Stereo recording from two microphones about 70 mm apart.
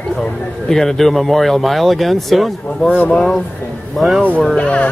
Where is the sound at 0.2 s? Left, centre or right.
Centre.